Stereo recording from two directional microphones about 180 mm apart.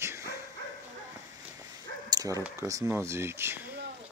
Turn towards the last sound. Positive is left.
turn(degrees=-15)  # may be behind; listen again after turning